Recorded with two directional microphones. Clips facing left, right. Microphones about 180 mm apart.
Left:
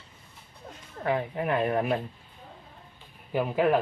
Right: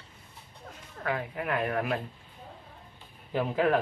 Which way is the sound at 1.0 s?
25° left (ahead or behind).